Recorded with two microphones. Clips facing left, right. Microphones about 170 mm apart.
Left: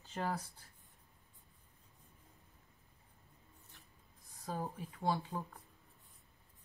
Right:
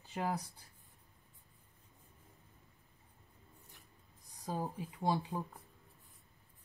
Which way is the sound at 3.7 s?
15° right (ahead or behind).